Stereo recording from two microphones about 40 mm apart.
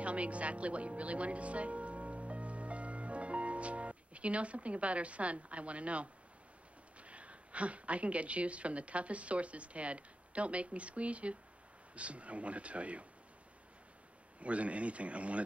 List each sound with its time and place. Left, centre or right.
0.0 s music: right
7.0 s a woman's voice: right
14.4 s a woman's voice: right